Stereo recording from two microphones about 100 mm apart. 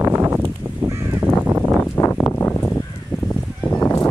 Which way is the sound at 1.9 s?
30° left (ahead or behind).